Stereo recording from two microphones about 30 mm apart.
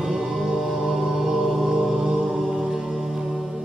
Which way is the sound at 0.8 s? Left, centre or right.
Centre.